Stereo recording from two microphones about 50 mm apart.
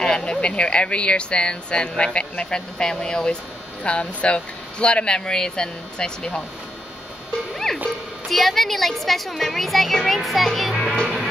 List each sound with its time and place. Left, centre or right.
0.0 s speech: centre
7.5 s music: centre
8.3 s a woman's voice: centre